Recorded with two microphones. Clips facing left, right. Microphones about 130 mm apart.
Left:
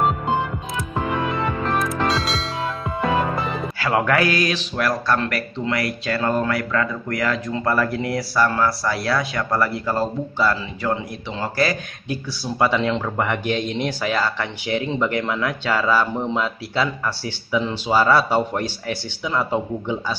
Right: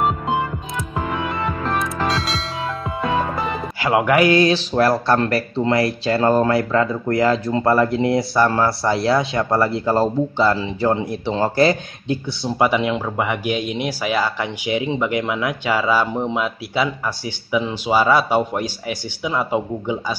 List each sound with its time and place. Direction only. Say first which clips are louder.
0.7 s music: left 1 dB; centre (ahead or behind)
3.8 s speech: right 4 dB; 15° right (ahead or behind)